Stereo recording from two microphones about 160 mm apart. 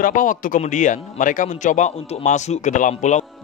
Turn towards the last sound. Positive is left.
turn(degrees=50)  # may be behind; listen again after turning